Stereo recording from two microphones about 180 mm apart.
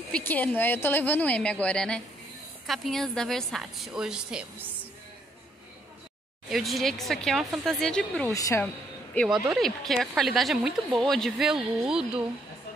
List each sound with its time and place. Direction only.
0.1 s a woman's voice: 10° left (ahead or behind)
6.5 s a woman's voice: centre (ahead or behind)
8.3 s a woman's voice: 20° left (ahead or behind)
9.1 s a woman's voice: 5° left (ahead or behind)